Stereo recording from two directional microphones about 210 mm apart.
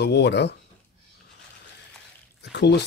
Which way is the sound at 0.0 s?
55° left (ahead or behind).